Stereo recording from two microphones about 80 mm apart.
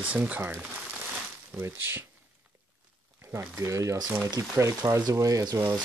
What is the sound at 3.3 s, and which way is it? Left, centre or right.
Speech, right.